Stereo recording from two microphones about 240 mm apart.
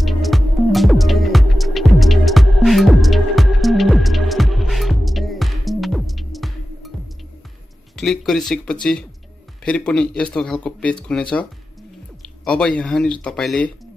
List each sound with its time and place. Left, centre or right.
0.0 s music: centre
7.9 s speech: centre
12.4 s speech: centre